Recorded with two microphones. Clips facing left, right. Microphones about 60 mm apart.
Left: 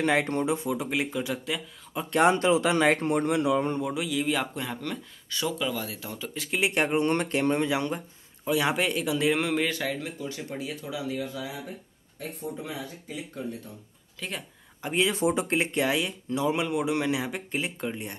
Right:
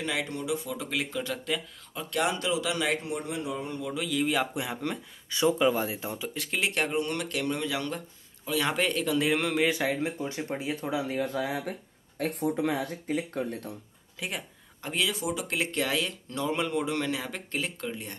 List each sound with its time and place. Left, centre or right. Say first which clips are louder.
0.0 s speech: left 7 dB; left
0.7 s speech: left 4 dB; centre
2.0 s speech: left 7 dB; left
3.8 s a man's voice: left 1 dB; centre
4.8 s speech: right 1 dB; centre
6.3 s a man's voice: left 2 dB; centre
6.6 s speech: left 4 dB; centre
7.0 s speech: left 5 dB; left; by 9.7 s centre
9.7 s speech: right 3 dB; centre
9.9 s speech: right 3 dB; right
14.2 s speech: even; centre
15.0 s speech: left 5 dB; left